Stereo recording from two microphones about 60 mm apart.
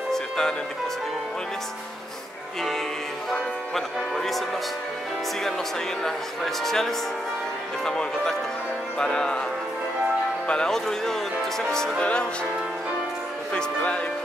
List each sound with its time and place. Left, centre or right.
0.1 s music: centre
3.3 s speech: centre
6.0 s speech: centre
10.5 s speech: centre
12.0 s speech: centre
13.5 s speech: centre